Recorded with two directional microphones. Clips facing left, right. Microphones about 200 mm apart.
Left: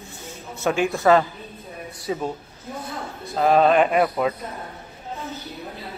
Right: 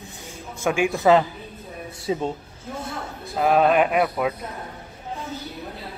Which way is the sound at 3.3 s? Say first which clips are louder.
Left 1 dB; 5° right (ahead or behind).